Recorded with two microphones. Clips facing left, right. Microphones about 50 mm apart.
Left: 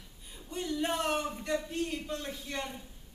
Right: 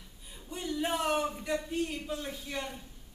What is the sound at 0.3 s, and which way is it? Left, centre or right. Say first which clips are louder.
A woman's voice: left 1 dB; centre.